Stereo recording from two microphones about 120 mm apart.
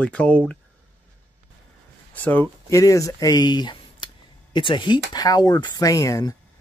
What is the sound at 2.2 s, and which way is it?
Speech, 15° left (ahead or behind).